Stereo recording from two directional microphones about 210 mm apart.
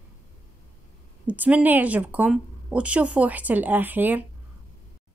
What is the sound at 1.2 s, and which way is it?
Speech, 5° right (ahead or behind).